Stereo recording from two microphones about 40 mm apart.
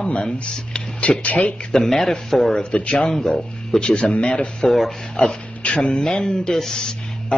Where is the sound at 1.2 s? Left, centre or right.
Left.